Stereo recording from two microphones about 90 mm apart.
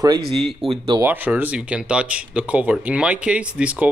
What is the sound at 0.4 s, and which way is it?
Speech, 5° right (ahead or behind).